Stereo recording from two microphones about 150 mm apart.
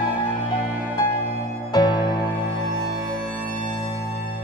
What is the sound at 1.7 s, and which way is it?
Music, 30° left (ahead or behind).